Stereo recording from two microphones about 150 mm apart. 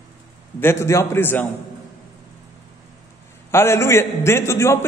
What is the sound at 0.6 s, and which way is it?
Speech, 15° left (ahead or behind).